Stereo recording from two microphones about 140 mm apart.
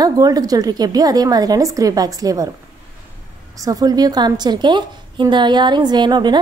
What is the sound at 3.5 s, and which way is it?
A woman's voice, 25° right (ahead or behind).